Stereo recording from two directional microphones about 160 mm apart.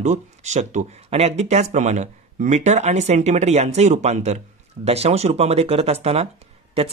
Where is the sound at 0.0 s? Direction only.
45° right (ahead or behind).